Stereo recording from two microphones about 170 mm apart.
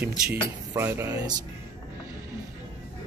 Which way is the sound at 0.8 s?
15° right (ahead or behind).